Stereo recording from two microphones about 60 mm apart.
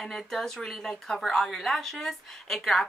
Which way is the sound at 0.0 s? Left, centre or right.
Centre.